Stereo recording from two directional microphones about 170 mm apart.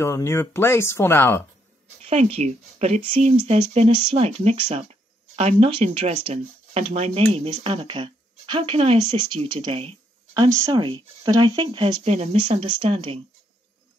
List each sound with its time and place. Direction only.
0.0 s speech: 15° left (ahead or behind)
2.0 s a woman's voice: 35° right (ahead or behind)